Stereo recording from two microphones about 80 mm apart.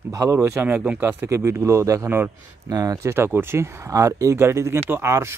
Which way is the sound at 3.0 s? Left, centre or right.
Right.